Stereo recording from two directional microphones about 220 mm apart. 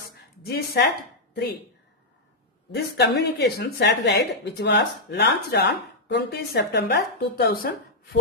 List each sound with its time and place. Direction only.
0.4 s speech: 45° left (ahead or behind)
2.7 s speech: 50° left (ahead or behind)